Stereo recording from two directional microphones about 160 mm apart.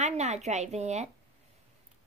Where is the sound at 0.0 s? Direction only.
45° right (ahead or behind).